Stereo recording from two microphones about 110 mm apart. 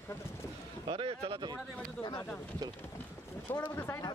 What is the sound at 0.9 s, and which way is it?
Speech, 55° right (ahead or behind).